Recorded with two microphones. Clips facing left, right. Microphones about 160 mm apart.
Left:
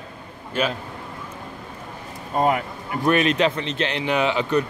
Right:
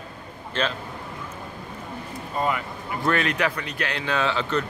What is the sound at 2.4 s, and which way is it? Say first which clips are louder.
Speech: left 5 dB; 50° left (ahead or behind).